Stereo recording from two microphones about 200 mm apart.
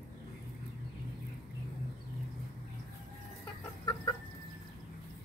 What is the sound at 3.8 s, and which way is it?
Chicken, 20° left (ahead or behind).